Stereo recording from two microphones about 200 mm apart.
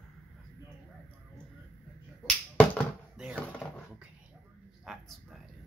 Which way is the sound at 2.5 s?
5° left (ahead or behind).